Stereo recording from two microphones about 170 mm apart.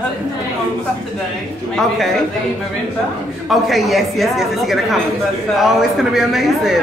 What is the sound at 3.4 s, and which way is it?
A man's voice, centre (ahead or behind).